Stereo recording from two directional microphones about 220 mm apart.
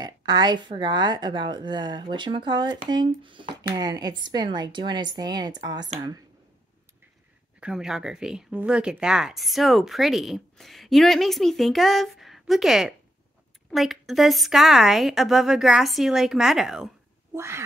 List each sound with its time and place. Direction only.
0.0 s a woman's voice: 20° right (ahead or behind)
7.6 s speech: centre (ahead or behind)
17.3 s quack: 10° right (ahead or behind)